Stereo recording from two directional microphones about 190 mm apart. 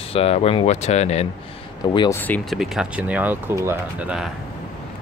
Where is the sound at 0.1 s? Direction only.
30° left (ahead or behind).